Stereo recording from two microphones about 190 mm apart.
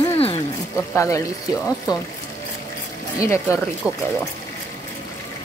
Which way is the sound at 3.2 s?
15° left (ahead or behind).